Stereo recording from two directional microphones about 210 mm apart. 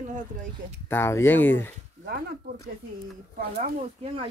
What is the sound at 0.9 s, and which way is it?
Speech, 10° left (ahead or behind).